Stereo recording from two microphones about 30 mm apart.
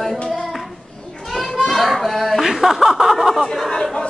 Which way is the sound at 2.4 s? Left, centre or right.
Centre.